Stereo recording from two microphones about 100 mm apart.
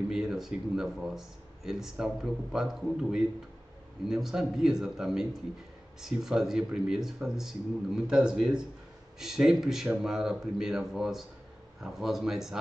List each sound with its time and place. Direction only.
0.1 s speech: 5° right (ahead or behind)